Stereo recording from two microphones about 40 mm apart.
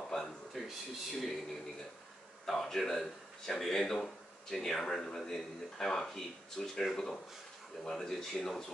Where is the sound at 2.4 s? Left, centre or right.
Centre.